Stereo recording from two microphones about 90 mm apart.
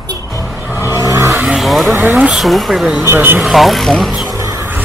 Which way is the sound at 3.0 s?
25° right (ahead or behind).